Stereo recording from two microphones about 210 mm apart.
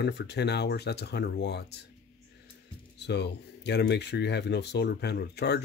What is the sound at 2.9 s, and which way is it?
Speech, 55° left (ahead or behind).